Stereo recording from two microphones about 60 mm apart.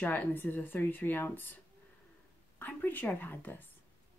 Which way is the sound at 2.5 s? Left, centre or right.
Left.